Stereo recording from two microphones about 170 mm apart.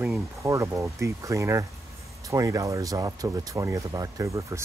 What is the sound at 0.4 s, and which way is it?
Speech, 20° right (ahead or behind).